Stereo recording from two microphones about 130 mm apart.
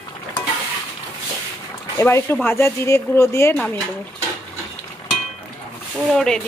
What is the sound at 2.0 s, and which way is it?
Speech, 20° left (ahead or behind).